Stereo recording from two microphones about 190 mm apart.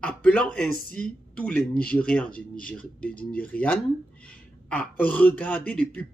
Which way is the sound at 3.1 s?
50° left (ahead or behind).